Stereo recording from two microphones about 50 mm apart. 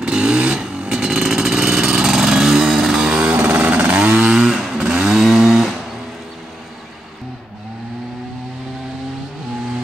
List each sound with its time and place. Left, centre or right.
0.0 s vehicle: centre
3.3 s music: right
3.6 s a sound: right
4.2 s vehicle: centre
4.7 s chainsaw: centre